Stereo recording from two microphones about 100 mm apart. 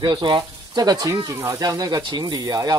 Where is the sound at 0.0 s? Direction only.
50° right (ahead or behind).